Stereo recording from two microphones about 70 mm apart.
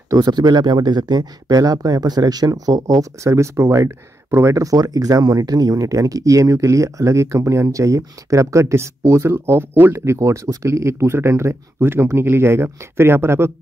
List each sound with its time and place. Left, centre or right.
0.1 s speech: right